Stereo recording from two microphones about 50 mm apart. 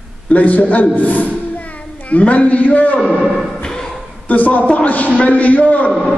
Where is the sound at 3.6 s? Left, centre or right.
Centre.